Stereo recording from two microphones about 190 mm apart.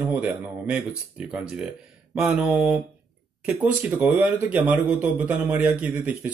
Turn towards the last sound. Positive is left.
turn(degrees=-10)  # may be behind; listen again after turning